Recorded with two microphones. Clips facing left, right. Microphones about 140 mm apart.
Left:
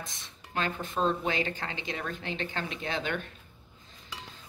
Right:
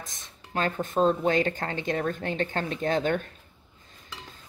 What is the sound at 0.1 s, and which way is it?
Speech, 45° right (ahead or behind).